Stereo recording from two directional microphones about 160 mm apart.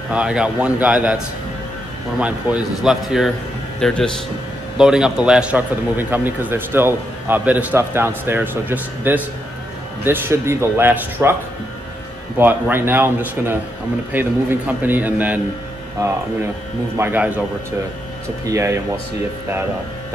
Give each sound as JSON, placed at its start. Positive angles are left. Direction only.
{"t": 0.1, "sound": "a man's voice", "side_deg": -5}
{"t": 2.1, "sound": "a man's voice", "side_deg": -5}
{"t": 12.4, "sound": "a man's voice", "side_deg": -10}
{"t": 16.9, "sound": "a man's voice", "side_deg": -15}